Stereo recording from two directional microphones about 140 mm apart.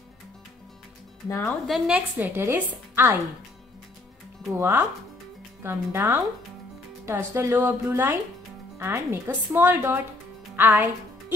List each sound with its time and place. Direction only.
1.7 s a woman's voice: 10° right (ahead or behind)
4.5 s a woman's voice: 20° right (ahead or behind)
10.5 s music: 15° right (ahead or behind)